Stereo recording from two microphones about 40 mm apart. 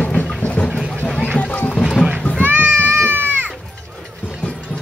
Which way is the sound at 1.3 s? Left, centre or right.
Left.